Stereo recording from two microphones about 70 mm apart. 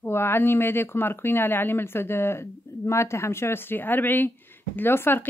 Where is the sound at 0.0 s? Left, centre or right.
Left.